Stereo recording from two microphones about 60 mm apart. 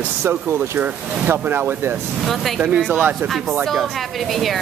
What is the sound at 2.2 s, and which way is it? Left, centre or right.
Speech, centre.